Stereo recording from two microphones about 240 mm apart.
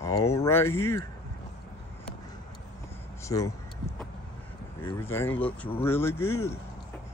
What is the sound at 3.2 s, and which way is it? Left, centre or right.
Speech, centre.